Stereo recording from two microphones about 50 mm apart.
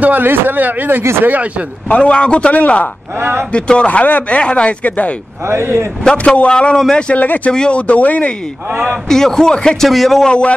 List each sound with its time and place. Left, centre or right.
0.0 s speech: right
1.9 s a man's voice: left
3.2 s speech: right
3.5 s a man's voice: left
5.5 s speech: right
6.1 s a man's voice: left
7.2 s speech: left
7.5 s a man's voice: left
9.1 s a man's voice: centre
9.8 s a man's voice: centre